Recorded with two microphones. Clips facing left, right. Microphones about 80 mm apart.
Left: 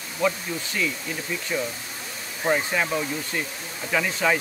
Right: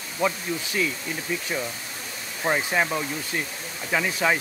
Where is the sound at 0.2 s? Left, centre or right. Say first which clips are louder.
Left 1 dB; centre.